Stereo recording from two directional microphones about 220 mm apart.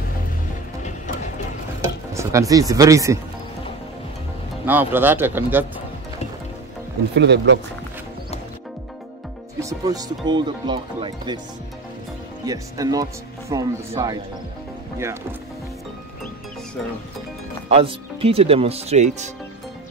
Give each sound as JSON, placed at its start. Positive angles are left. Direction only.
{"t": 0.8, "sound": "music", "side_deg": 35}
{"t": 2.1, "sound": "speech", "side_deg": -15}
{"t": 4.6, "sound": "speech", "side_deg": -10}
{"t": 7.2, "sound": "speech", "side_deg": -50}
{"t": 9.6, "sound": "speech", "side_deg": -15}
{"t": 12.4, "sound": "speech", "side_deg": -15}
{"t": 17.6, "sound": "speech", "side_deg": -25}